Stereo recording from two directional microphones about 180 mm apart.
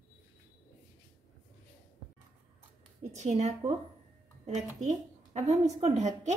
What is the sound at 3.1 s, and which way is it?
Speech, 40° right (ahead or behind).